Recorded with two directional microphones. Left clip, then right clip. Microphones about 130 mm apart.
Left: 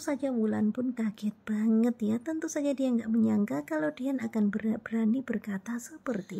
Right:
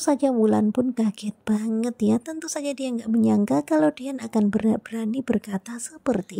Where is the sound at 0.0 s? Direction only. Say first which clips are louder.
Right 10 dB; 45° right (ahead or behind).